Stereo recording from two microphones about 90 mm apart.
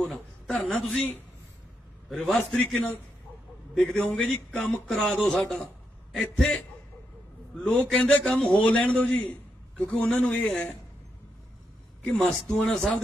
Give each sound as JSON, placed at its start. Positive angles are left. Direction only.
{"t": 0.0, "sound": "a man's voice", "side_deg": 5}
{"t": 2.0, "sound": "a man's voice", "side_deg": 0}
{"t": 12.0, "sound": "a man's voice", "side_deg": 10}